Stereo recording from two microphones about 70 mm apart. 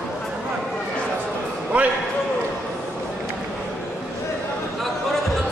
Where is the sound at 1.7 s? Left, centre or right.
Centre.